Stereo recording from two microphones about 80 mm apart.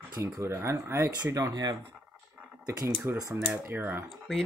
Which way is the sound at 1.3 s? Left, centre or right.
Right.